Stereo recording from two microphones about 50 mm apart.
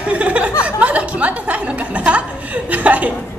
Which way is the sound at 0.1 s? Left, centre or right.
Right.